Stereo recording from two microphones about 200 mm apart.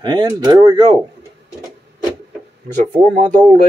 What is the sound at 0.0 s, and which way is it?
Speech, 20° right (ahead or behind).